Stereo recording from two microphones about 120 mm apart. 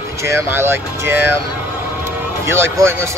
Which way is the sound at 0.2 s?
25° right (ahead or behind).